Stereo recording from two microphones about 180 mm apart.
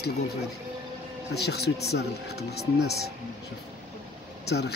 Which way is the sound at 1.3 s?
65° left (ahead or behind).